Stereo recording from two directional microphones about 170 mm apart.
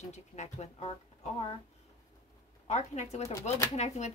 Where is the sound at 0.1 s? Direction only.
40° left (ahead or behind).